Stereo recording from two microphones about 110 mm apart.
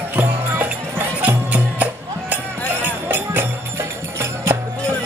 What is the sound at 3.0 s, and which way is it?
Music, 20° right (ahead or behind).